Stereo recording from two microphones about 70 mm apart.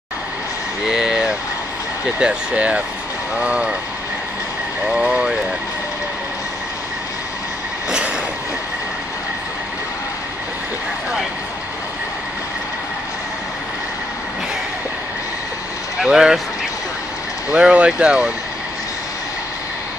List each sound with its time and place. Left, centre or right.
0.8 s a sound: centre
2.1 s speech: centre
4.8 s vehicle: centre
16.0 s speech: centre
17.5 s speech: centre